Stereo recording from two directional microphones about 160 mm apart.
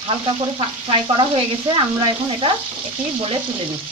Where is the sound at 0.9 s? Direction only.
30° right (ahead or behind).